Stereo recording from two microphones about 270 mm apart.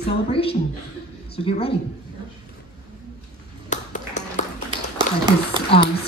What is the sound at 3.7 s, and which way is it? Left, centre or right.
Ping, left.